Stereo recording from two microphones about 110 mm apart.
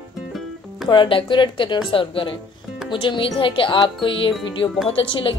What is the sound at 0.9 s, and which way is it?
A woman's voice, 50° left (ahead or behind).